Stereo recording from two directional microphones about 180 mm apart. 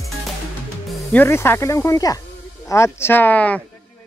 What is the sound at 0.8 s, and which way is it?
Music, centre (ahead or behind).